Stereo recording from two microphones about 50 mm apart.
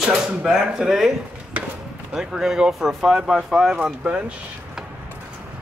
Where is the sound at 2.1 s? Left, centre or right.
Centre.